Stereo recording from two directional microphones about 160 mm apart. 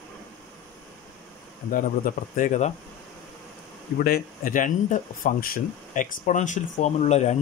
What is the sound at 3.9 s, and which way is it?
Speech, 70° left (ahead or behind).